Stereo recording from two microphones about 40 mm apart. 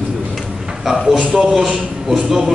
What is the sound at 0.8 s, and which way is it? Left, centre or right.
Speech, centre.